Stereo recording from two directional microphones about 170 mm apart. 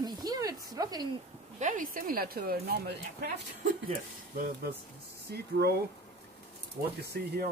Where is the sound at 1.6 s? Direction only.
50° right (ahead or behind); by 3.4 s 70° right (ahead or behind).